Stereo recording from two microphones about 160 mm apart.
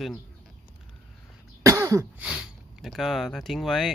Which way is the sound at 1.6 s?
20° right (ahead or behind).